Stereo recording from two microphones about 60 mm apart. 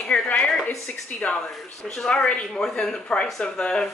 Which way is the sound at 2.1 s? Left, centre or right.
Centre.